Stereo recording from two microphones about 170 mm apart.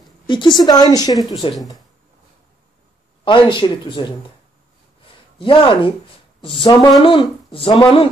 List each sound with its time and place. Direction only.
0.3 s a woman's voice: 25° left (ahead or behind)
1.5 s speech: centre (ahead or behind)
3.3 s a woman's voice: 30° left (ahead or behind)
5.4 s a woman's voice: 30° left (ahead or behind)